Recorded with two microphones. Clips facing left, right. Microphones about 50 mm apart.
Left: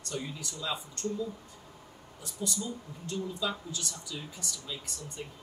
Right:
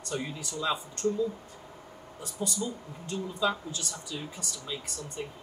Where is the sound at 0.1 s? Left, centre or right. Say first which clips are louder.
Right 3 dB; right.